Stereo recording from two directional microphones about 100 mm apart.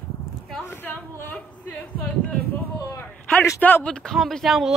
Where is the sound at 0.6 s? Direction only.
20° left (ahead or behind).